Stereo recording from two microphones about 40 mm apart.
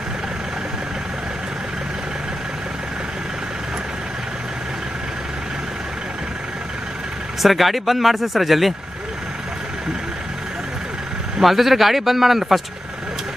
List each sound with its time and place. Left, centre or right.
7.4 s speech: centre
11.4 s speech: centre